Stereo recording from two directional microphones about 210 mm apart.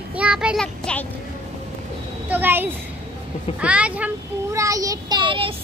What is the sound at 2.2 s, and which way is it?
A child's voice, 10° right (ahead or behind).